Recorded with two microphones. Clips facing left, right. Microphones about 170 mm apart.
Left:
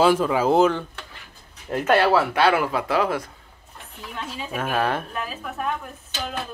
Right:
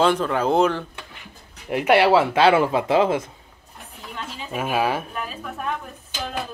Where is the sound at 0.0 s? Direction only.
5° left (ahead or behind).